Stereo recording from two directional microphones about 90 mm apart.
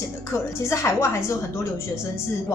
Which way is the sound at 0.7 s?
35° left (ahead or behind).